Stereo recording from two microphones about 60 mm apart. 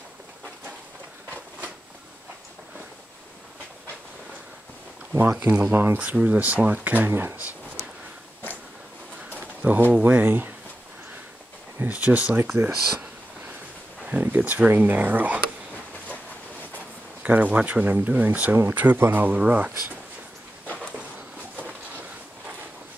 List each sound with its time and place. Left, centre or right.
5.1 s speech: right
7.1 s speech: right
9.6 s speech: right
11.9 s speech: right
14.0 s speech: right
17.2 s speech: right
20.6 s a sound: left